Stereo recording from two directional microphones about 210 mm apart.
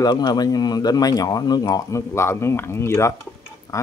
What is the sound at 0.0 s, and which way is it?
Speech, 20° left (ahead or behind).